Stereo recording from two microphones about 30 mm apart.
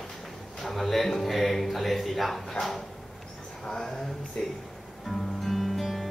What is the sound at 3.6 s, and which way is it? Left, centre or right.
Speech, left.